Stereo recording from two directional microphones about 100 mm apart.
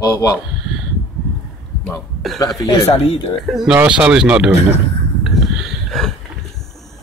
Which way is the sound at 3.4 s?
5° right (ahead or behind).